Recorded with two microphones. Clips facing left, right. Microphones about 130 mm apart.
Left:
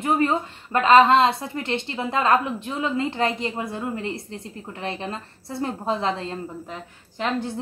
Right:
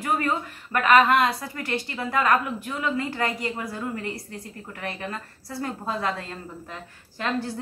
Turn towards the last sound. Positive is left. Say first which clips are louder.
# left 2 dB
turn(degrees=20)  # may be behind; listen again after turning